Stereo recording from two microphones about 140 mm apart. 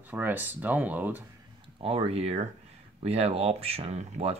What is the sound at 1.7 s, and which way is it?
Speech, 40° right (ahead or behind).